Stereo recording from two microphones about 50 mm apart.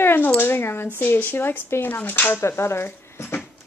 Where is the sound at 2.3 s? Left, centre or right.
Left.